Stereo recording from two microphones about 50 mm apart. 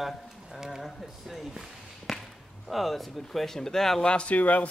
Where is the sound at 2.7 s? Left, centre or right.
Centre.